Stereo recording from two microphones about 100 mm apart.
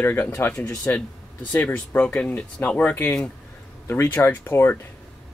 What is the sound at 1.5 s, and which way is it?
Speech, 15° left (ahead or behind).